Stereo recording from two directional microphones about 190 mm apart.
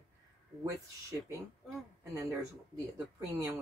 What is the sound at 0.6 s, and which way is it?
Speech, 15° right (ahead or behind).